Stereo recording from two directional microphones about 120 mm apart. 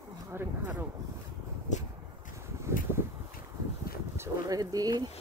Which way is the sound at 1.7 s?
90° left.